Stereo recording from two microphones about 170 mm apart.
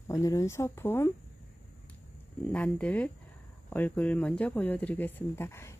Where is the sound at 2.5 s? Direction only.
10° left (ahead or behind).